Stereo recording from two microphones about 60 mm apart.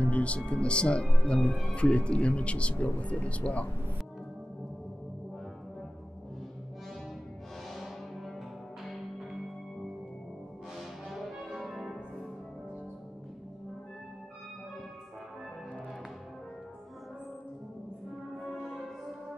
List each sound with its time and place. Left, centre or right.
0.0 s speech: left
7.7 s music: centre
10.8 s music: centre
18.4 s music: centre